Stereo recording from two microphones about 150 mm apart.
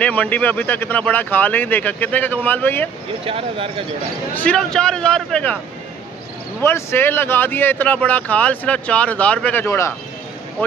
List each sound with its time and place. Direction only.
0.0 s speech: 10° left (ahead or behind)
3.3 s speech: 40° right (ahead or behind)
4.4 s speech: 5° left (ahead or behind)
6.6 s speech: 15° left (ahead or behind)